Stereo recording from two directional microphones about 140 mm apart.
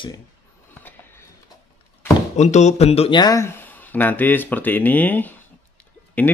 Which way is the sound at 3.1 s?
25° left (ahead or behind).